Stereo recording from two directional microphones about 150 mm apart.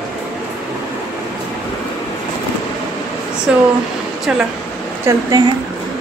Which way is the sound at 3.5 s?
5° right (ahead or behind).